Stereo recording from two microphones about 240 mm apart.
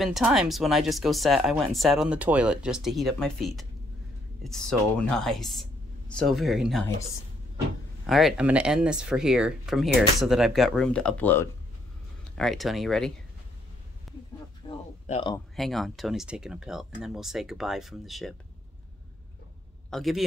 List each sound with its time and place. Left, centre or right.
0.0 s speech: centre
8.1 s speech: centre
14.1 s a sound: centre
14.7 s a sound: left
15.5 s speech: centre
19.9 s speech: centre